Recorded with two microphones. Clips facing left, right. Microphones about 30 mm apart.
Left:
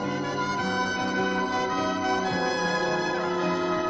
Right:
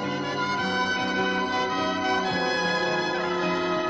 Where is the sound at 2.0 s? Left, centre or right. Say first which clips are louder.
Right 1 dB; right.